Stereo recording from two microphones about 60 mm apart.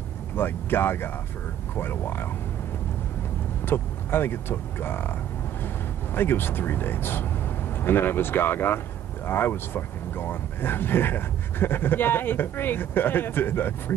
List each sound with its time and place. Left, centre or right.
0.4 s speech: left
3.6 s speech: left
6.1 s speech: left